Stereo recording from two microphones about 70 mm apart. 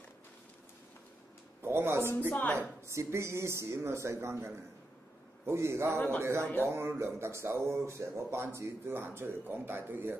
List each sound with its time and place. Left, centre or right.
1.6 s speech: right
5.9 s speech: left
6.6 s speech: right